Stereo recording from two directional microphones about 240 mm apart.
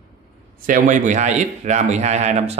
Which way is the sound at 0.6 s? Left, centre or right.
Right.